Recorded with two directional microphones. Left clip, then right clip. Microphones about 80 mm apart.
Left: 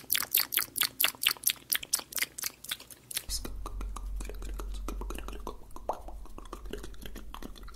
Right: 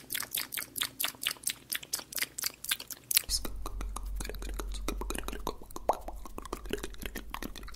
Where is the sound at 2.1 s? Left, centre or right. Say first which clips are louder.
Right 2 dB; centre.